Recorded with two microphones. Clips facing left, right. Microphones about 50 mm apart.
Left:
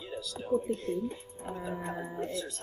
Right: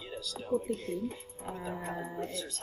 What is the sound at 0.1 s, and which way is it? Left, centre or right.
Speech, centre.